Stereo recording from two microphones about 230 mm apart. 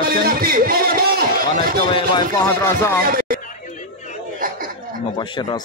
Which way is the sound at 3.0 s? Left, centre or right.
Right.